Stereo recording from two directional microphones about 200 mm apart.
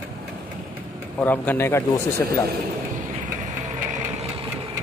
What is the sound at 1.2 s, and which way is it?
Speech, 10° left (ahead or behind).